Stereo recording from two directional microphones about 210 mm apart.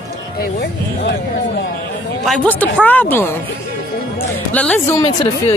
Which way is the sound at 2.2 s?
5° left (ahead or behind).